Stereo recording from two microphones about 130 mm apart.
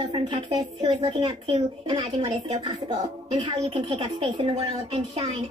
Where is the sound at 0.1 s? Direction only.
40° right (ahead or behind).